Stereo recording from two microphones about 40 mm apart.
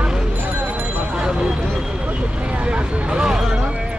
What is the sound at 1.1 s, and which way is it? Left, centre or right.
Vehicle, right.